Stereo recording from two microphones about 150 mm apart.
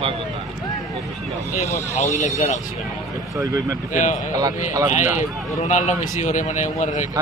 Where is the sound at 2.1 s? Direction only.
50° left (ahead or behind).